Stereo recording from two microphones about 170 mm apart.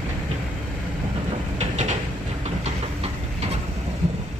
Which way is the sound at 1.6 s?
45° right (ahead or behind).